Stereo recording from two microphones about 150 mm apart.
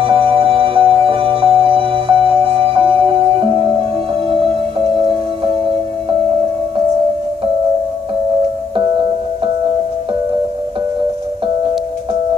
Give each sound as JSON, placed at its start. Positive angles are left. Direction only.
{"t": 0.0, "sound": "music", "side_deg": -35}